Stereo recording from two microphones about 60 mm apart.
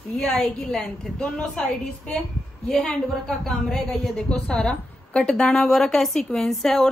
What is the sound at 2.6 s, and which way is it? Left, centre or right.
A woman's voice, centre.